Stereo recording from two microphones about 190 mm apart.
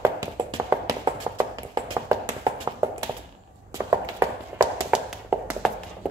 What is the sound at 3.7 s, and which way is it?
Tap, 15° right (ahead or behind).